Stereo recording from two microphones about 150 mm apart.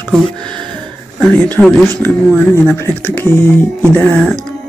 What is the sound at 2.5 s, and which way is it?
Speech, 15° left (ahead or behind).